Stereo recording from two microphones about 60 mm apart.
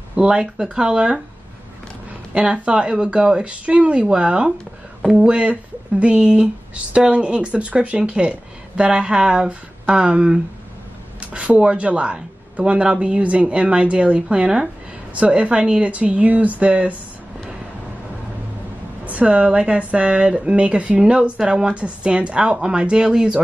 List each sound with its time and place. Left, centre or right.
0.1 s speech: centre
2.3 s speech: centre
19.0 s a woman's voice: right